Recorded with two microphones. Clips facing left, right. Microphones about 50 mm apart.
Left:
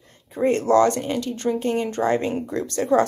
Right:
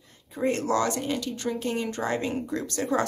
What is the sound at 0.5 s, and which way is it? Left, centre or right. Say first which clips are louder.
A woman's voice: left 8 dB; left.